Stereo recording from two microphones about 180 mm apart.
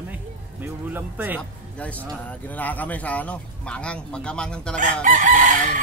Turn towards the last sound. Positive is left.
turn(degrees=-45)  # may be behind; listen again after turning